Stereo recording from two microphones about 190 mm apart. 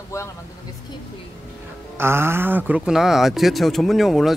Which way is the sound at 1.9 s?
10° right (ahead or behind).